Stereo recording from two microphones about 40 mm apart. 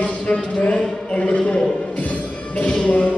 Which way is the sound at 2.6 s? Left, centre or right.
Left.